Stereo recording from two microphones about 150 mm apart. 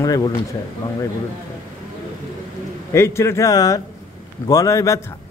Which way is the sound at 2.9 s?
20° left (ahead or behind).